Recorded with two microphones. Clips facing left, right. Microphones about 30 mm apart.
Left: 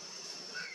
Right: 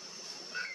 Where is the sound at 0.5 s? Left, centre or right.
Right.